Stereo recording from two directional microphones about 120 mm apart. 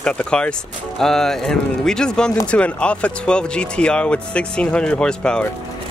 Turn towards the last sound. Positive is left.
turn(degrees=10)  # may be behind; listen again after turning